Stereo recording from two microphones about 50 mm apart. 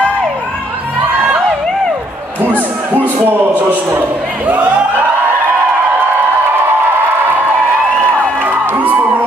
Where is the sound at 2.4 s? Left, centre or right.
Right.